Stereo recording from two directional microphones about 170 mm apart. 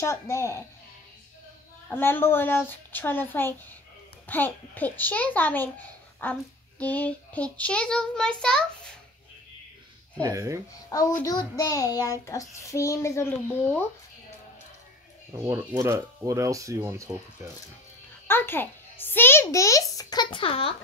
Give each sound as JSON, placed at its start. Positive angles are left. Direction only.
{"t": 0.0, "sound": "a child's voice", "side_deg": 15}
{"t": 1.9, "sound": "a child's voice", "side_deg": 10}
{"t": 6.8, "sound": "child singing", "side_deg": 10}
{"t": 10.2, "sound": "speech", "side_deg": -20}
{"t": 10.9, "sound": "a child's voice", "side_deg": 20}
{"t": 15.3, "sound": "speech", "side_deg": -20}
{"t": 18.2, "sound": "a child's voice", "side_deg": 10}